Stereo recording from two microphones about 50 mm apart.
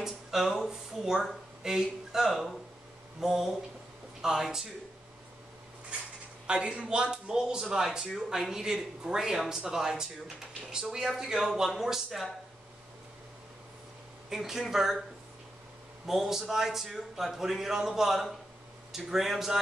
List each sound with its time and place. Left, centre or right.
0.0 s speech: centre
6.4 s a man's voice: centre
14.3 s a man's voice: centre
16.1 s a man's voice: centre